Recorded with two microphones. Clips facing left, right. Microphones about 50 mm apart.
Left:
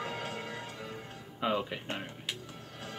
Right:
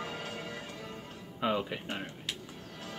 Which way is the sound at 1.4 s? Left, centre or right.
Centre.